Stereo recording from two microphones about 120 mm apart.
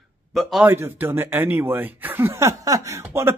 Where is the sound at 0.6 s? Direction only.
20° right (ahead or behind).